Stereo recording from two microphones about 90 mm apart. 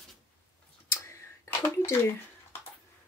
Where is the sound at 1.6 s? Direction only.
30° left (ahead or behind).